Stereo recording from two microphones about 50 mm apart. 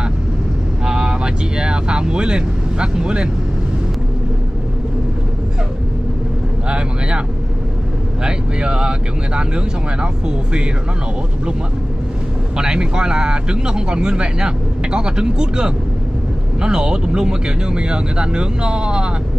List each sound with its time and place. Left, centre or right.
0.8 s vehicle: centre
6.7 s vehicle: centre
8.2 s speech: centre
12.5 s speech: centre